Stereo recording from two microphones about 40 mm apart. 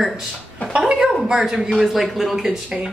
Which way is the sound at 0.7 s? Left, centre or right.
Centre.